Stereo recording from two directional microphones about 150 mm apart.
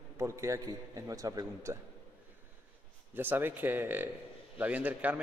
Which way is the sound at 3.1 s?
10° right (ahead or behind).